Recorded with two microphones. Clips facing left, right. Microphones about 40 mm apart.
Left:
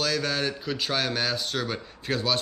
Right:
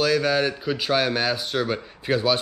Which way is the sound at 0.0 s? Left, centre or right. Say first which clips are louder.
Right 6 dB; centre.